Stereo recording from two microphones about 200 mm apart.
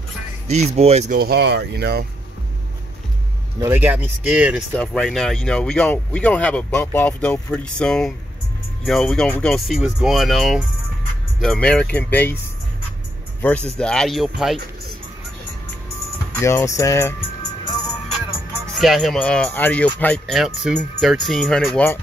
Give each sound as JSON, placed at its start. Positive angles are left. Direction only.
{"t": 0.5, "sound": "speech", "side_deg": -30}
{"t": 1.2, "sound": "speech", "side_deg": -55}
{"t": 3.5, "sound": "speech", "side_deg": -15}
{"t": 13.4, "sound": "speech", "side_deg": 5}
{"t": 16.3, "sound": "speech", "side_deg": 15}
{"t": 18.7, "sound": "speech", "side_deg": 0}